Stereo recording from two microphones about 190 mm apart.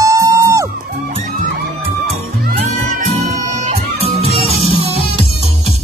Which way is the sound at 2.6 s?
40° right (ahead or behind).